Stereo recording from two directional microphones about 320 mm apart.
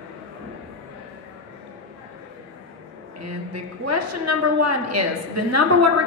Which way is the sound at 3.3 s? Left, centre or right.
Right.